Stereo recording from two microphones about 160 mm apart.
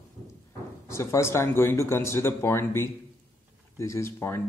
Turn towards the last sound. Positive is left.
turn(degrees=15)  # may be behind; listen again after turning